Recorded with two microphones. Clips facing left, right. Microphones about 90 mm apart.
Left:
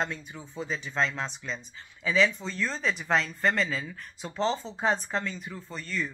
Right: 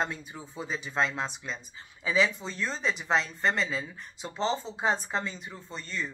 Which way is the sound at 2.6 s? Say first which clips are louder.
Left 1 dB; centre (ahead or behind).